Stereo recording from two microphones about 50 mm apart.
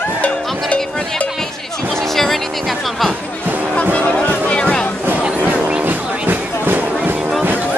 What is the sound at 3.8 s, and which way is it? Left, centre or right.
Music, left.